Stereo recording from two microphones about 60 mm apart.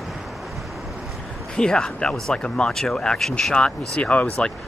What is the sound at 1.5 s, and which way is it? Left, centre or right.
Speech, centre.